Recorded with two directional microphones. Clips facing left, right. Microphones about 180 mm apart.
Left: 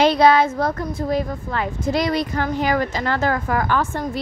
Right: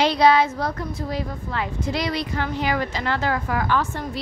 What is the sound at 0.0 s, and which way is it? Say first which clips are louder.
Speech: left 3 dB; 50° left (ahead or behind).